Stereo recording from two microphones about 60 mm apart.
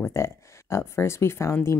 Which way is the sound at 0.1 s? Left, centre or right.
Left.